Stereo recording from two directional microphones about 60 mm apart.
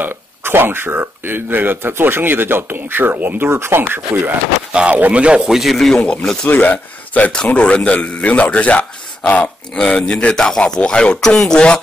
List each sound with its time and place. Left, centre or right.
0.0 s speech: right
3.5 s speech: right
4.9 s speech: right
5.5 s a man's voice: centre
6.4 s a man's voice: left